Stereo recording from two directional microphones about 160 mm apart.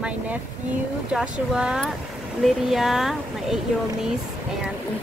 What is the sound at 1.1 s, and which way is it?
Speech, 5° right (ahead or behind).